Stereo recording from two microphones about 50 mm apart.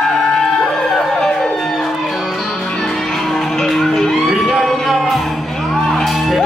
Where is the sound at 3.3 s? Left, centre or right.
Centre.